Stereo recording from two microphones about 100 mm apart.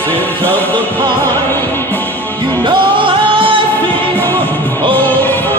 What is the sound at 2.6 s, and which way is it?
Music, 60° right (ahead or behind).